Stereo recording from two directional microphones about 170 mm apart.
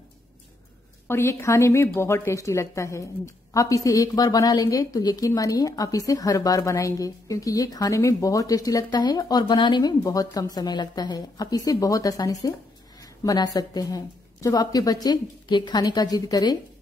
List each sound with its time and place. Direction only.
1.0 s a woman's voice: 15° left (ahead or behind)